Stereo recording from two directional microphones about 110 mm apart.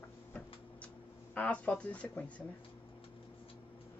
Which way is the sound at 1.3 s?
10° left (ahead or behind).